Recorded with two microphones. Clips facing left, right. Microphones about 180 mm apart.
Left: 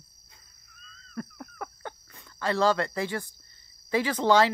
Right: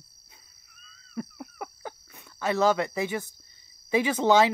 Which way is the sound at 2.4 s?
20° right (ahead or behind).